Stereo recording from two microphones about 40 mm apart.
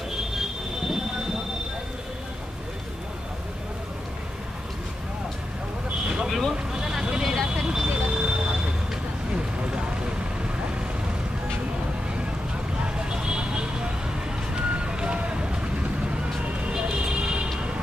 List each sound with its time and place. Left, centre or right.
0.1 s train: centre
6.2 s vehicle: centre
6.5 s vehicle: centre
12.8 s vehicle: right
16.6 s vehicle: right